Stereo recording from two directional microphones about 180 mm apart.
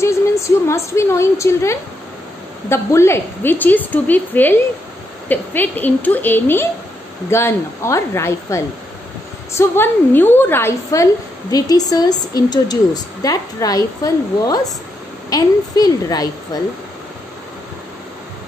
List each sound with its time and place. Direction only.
0.0 s a woman's voice: 15° left (ahead or behind)